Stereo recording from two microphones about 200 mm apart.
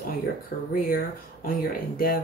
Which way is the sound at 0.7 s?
45° left (ahead or behind).